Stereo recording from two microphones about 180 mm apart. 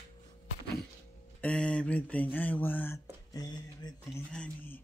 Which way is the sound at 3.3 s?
20° left (ahead or behind).